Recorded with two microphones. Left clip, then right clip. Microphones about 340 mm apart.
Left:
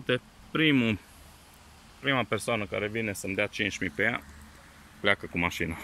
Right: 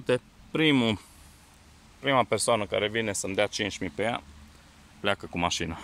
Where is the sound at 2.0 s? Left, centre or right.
Centre.